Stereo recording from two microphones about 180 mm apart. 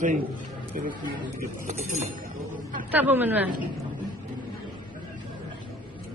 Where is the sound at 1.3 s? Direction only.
45° right (ahead or behind).